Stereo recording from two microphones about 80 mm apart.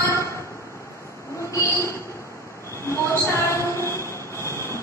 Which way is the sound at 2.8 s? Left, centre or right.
Left.